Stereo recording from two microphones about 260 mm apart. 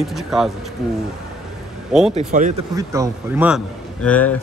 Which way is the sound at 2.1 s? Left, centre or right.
Right.